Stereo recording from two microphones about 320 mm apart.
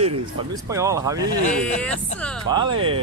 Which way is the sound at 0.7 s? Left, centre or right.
Centre.